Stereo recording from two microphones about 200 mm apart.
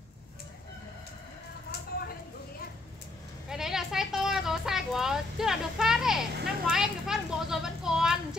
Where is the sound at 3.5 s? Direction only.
Centre (ahead or behind).